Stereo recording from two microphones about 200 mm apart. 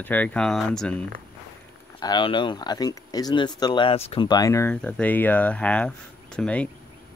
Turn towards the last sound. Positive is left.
turn(degrees=5)  # may be behind; listen again after turning